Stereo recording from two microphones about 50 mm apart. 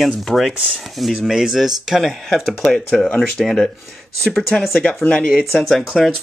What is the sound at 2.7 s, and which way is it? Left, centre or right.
Speech, centre.